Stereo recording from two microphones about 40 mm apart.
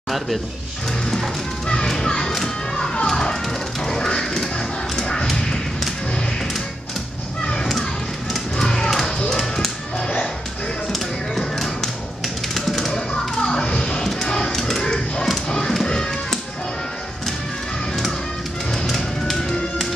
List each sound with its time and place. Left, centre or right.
1.7 s children playing: centre
3.1 s music: centre
3.8 s a sound: centre
8.5 s music: centre
10.9 s music: centre
12.5 s honk: centre
13.4 s music: centre
13.7 s music: left
14.0 s music: centre